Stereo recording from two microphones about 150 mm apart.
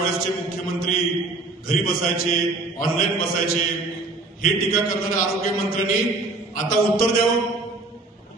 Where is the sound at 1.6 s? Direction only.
75° left (ahead or behind).